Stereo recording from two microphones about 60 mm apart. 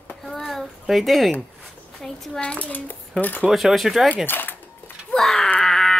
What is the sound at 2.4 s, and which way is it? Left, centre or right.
A child's voice, left.